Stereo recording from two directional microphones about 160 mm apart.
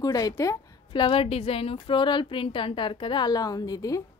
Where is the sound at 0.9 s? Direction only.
30° left (ahead or behind).